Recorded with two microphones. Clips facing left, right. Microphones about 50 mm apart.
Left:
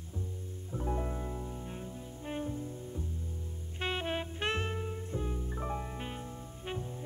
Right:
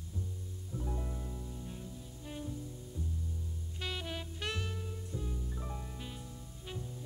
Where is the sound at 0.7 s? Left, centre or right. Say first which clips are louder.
Left 6 dB; left.